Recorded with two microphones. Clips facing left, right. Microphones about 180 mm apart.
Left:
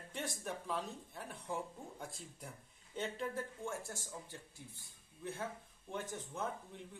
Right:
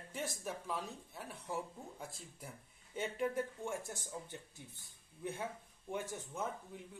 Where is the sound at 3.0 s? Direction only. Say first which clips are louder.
Right 3 dB; 15° right (ahead or behind).